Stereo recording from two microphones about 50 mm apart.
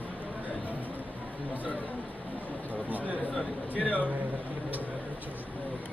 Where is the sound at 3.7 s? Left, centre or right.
Left.